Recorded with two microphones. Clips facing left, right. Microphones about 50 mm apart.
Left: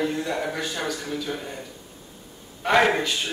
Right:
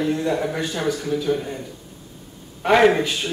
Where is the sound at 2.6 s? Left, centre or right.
Centre.